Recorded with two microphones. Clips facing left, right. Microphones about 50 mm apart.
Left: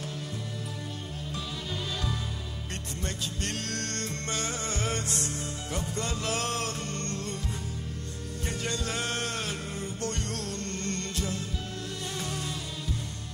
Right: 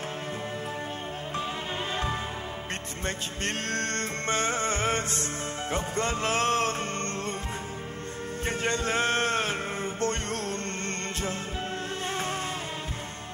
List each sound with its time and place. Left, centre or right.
3.4 s music: right
8.5 s music: right